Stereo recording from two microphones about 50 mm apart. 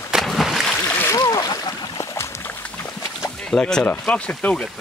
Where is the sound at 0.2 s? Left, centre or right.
Centre.